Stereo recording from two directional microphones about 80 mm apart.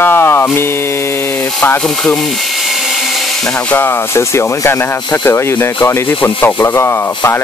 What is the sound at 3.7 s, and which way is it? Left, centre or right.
Speech, left.